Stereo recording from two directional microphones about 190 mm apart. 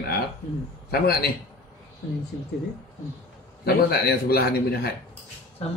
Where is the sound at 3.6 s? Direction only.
55° left (ahead or behind).